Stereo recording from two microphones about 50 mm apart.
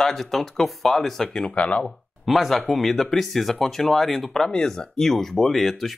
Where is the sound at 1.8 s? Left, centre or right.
Centre.